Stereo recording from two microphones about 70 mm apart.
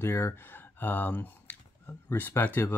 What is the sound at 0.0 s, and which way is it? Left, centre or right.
Speech, left.